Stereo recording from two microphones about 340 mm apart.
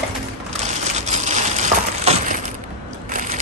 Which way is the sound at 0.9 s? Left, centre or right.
Centre.